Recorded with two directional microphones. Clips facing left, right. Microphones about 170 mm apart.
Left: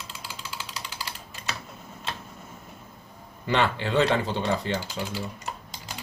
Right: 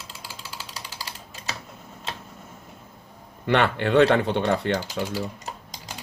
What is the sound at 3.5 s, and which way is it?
Speech, 60° right (ahead or behind).